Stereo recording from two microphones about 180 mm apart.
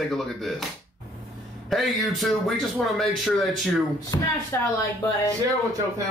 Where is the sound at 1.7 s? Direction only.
Centre (ahead or behind).